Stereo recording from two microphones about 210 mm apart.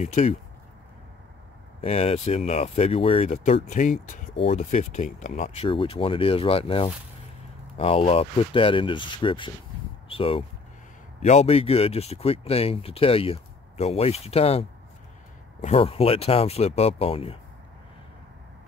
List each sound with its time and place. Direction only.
0.0 s speech: 35° left (ahead or behind)
1.8 s speech: 30° left (ahead or behind)